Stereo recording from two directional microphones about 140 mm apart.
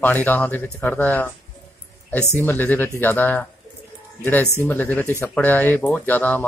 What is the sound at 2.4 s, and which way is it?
Speech, 15° left (ahead or behind).